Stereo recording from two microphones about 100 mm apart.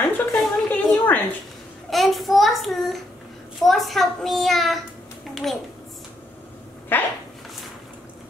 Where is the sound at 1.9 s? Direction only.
Centre (ahead or behind).